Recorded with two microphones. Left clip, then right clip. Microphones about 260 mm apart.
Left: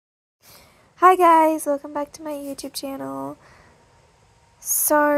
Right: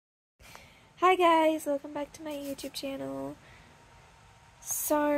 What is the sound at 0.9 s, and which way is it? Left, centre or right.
A woman's voice, left.